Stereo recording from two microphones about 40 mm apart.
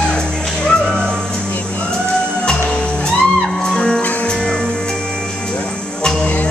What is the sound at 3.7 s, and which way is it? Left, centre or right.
Music, centre.